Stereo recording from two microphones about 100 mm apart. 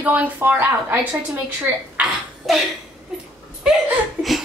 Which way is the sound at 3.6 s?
5° right (ahead or behind).